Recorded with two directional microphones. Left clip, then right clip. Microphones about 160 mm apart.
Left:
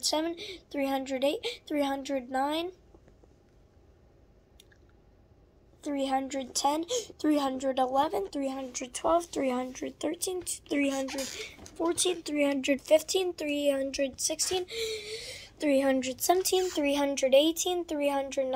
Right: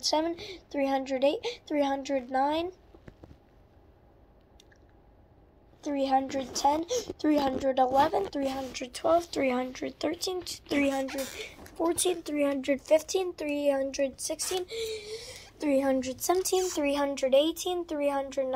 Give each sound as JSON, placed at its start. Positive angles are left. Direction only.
{"t": 0.0, "sound": "a woman's voice", "side_deg": 5}
{"t": 5.8, "sound": "a woman's voice", "side_deg": 10}
{"t": 8.8, "sound": "speech", "side_deg": 0}
{"t": 9.2, "sound": "a woman's voice", "side_deg": 15}
{"t": 12.4, "sound": "speech", "side_deg": 25}